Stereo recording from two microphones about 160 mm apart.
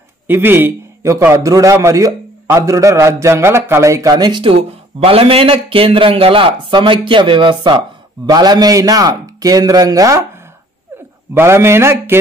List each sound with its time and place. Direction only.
0.3 s a man's voice: 15° right (ahead or behind)
11.3 s mantra: 15° right (ahead or behind)